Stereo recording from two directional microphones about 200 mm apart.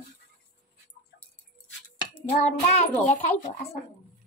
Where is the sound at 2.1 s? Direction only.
50° left (ahead or behind).